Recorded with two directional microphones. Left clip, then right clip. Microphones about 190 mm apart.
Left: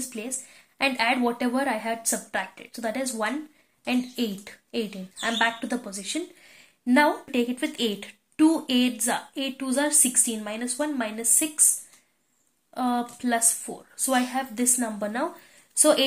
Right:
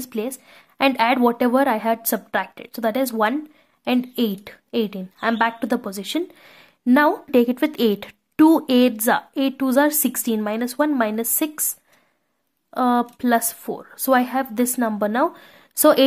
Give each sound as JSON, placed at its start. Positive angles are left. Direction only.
{"t": 0.0, "sound": "speech", "side_deg": -45}
{"t": 12.7, "sound": "speech", "side_deg": -45}